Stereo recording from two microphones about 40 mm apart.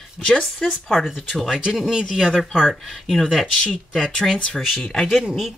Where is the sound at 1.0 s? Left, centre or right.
Centre.